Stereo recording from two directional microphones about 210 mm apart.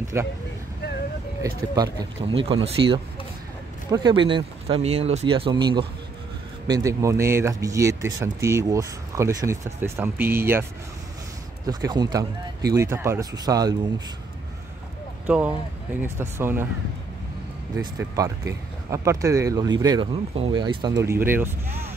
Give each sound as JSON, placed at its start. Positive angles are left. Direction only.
{"t": 0.1, "sound": "speech", "side_deg": -10}
{"t": 1.4, "sound": "speech", "side_deg": -20}
{"t": 15.2, "sound": "speech", "side_deg": -5}
{"t": 17.9, "sound": "speech", "side_deg": -15}